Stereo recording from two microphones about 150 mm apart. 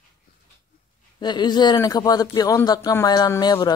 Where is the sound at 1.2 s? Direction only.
30° left (ahead or behind).